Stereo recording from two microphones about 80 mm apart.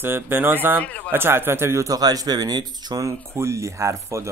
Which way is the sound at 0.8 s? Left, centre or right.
Centre.